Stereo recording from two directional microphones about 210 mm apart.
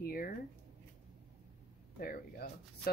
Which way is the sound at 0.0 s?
45° left (ahead or behind).